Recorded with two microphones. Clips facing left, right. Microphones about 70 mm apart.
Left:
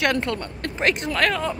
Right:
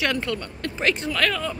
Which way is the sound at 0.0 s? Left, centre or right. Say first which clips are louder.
Left 3 dB; left.